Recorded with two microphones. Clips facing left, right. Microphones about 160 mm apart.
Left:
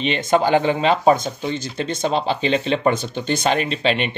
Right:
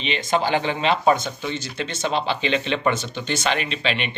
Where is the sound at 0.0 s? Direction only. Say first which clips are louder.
Left 5 dB; 50° left (ahead or behind).